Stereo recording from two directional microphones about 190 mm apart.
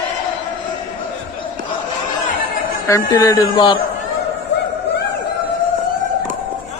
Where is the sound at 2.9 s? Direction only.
15° left (ahead or behind).